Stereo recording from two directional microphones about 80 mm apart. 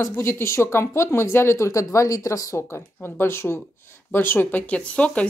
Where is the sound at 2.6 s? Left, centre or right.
Left.